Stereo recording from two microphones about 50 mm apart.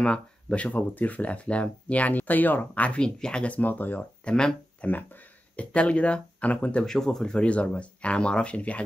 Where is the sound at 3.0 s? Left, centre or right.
Centre.